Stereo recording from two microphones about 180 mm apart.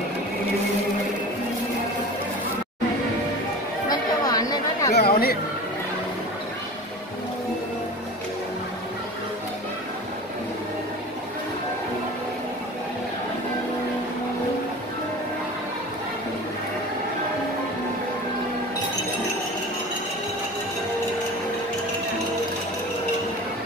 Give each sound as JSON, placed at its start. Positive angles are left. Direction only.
{"t": 3.9, "sound": "chatter", "side_deg": 20}
{"t": 4.9, "sound": "chatter", "side_deg": 60}